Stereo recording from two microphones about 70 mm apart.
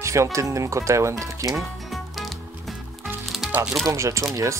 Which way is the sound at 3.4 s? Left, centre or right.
Centre.